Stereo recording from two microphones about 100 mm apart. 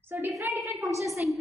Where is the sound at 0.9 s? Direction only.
30° right (ahead or behind).